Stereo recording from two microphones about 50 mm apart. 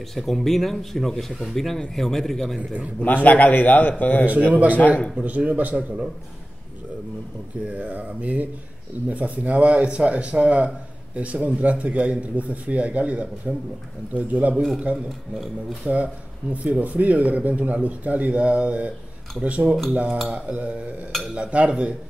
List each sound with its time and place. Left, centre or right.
0.1 s a man's voice: centre
3.0 s a man's voice: left
5.1 s speech: right
7.6 s a man's voice: right
15.0 s speech: centre
15.9 s a man's voice: right